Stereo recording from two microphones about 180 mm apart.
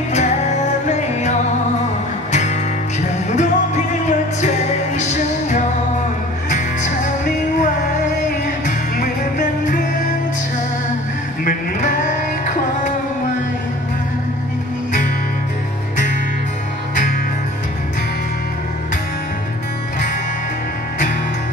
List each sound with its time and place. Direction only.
0.1 s music: 40° left (ahead or behind)
2.3 s music: 40° left (ahead or behind)
8.6 s music: 45° left (ahead or behind)